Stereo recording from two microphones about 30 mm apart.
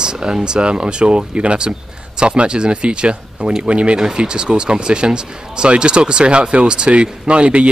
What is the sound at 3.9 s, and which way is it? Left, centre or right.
Speech, right.